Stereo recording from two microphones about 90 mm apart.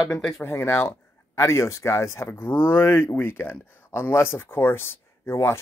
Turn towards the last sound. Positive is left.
turn(degrees=30)  # may be behind; listen again after turning